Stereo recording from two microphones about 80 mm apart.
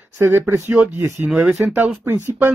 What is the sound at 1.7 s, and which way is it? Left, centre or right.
Speech, right.